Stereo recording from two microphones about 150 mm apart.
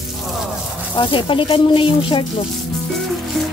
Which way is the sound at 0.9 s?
35° left (ahead or behind).